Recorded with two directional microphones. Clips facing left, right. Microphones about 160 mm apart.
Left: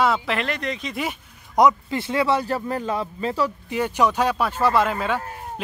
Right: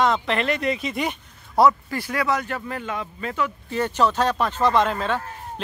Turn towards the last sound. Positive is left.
turn(degrees=10)  # may be behind; listen again after turning